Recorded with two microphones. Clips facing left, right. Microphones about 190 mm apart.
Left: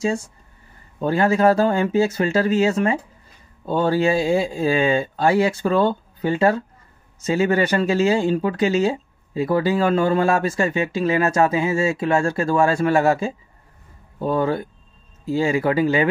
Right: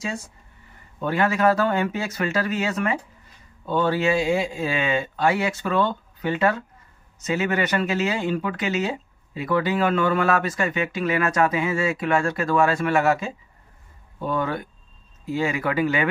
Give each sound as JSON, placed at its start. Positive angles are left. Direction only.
{"t": 1.0, "sound": "speech", "side_deg": 30}